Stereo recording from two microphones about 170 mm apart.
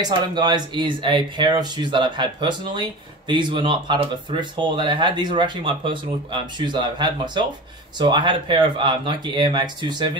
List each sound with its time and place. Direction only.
0.0 s speech: 25° right (ahead or behind)